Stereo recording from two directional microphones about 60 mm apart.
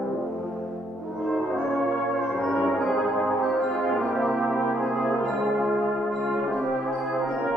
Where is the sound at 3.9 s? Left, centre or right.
Centre.